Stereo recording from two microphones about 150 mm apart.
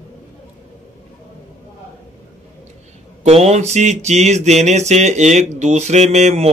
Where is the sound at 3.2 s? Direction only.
45° right (ahead or behind).